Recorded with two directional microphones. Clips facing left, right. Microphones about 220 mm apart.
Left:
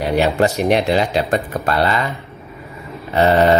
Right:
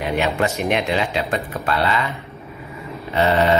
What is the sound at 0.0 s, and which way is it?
Speech, 35° left (ahead or behind).